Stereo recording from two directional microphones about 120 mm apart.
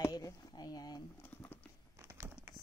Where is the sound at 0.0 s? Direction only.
30° left (ahead or behind).